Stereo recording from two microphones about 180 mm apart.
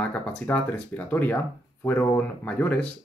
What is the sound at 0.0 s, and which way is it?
Speech, 5° left (ahead or behind).